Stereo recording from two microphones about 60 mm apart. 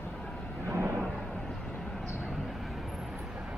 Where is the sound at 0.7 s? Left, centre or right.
Right.